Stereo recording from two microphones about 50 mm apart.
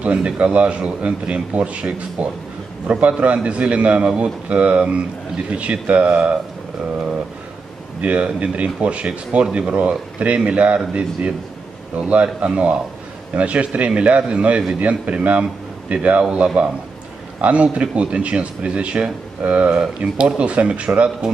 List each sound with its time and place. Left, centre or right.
0.0 s speech: right
8.0 s speech: right